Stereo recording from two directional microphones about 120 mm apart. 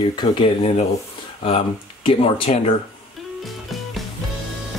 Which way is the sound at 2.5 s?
65° left (ahead or behind).